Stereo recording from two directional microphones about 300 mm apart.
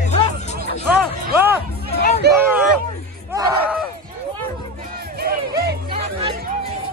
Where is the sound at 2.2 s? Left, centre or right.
Right.